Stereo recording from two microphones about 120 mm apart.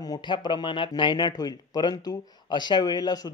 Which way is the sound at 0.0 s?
35° left (ahead or behind).